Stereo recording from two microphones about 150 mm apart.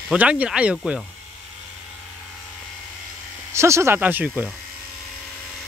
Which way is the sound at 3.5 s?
20° right (ahead or behind).